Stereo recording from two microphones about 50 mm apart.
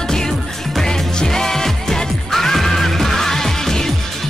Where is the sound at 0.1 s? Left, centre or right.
Centre.